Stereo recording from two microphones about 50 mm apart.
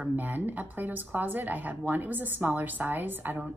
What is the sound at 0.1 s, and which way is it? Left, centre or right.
Speech, right.